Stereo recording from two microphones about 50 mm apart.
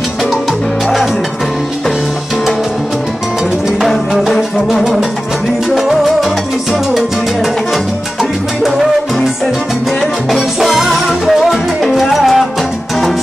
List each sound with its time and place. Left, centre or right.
3.8 s music: centre
5.8 s salsa music: centre
10.6 s music: centre